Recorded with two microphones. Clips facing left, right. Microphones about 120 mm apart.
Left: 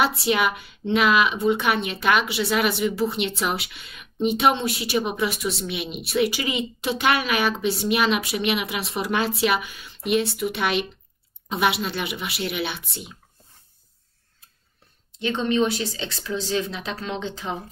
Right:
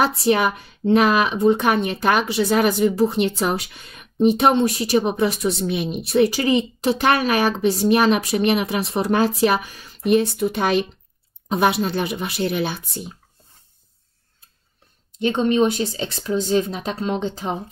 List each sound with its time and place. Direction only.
0.0 s a woman's voice: 40° right (ahead or behind)
15.1 s a woman's voice: 40° right (ahead or behind)